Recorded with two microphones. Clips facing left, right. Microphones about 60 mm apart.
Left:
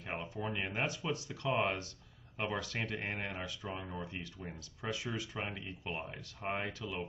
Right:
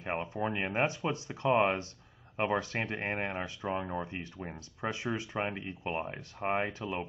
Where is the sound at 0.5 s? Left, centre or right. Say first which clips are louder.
Right 5 dB; right.